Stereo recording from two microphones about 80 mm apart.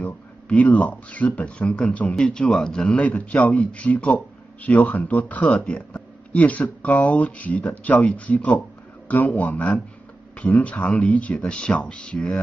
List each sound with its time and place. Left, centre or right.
0.0 s speech: centre